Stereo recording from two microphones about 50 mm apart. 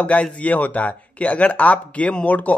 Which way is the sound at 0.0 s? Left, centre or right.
Left.